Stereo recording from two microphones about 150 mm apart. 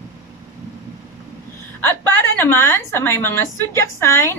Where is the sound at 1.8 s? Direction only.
15° left (ahead or behind).